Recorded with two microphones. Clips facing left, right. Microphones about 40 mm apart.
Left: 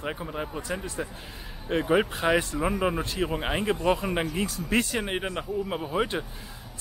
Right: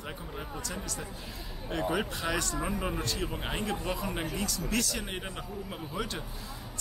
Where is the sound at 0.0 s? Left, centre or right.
Left.